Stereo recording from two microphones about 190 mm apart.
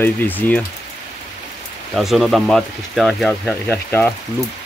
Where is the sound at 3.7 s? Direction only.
10° left (ahead or behind).